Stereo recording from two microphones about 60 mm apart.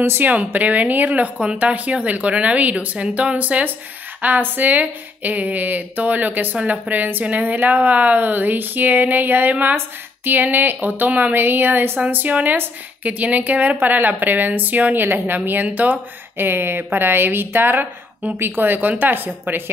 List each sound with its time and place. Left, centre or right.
0.0 s a woman's voice: right
0.3 s a woman's voice: right